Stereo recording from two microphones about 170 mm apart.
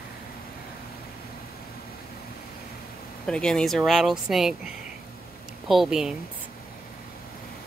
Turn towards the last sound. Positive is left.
turn(degrees=-5)  # may be behind; listen again after turning